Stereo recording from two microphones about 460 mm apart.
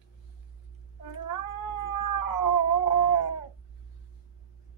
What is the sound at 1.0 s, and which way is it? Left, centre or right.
Cat, left.